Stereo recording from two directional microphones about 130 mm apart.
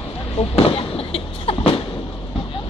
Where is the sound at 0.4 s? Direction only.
45° left (ahead or behind).